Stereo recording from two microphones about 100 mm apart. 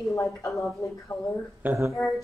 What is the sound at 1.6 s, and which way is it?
Speech, 25° right (ahead or behind).